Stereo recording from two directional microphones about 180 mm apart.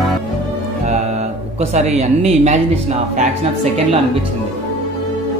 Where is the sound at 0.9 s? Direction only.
35° right (ahead or behind).